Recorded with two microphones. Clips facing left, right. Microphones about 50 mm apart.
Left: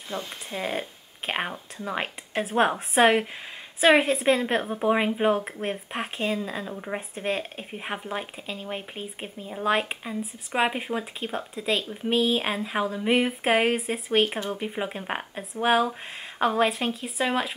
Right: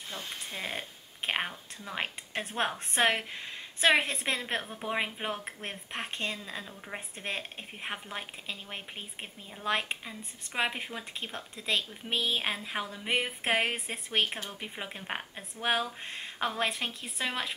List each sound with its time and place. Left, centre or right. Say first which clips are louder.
0.1 s speech: left 10 dB; left
0.5 s speech: left 9 dB; centre
1.5 s speech: left 9 dB; left
2.0 s a woman's voice: left 5 dB; centre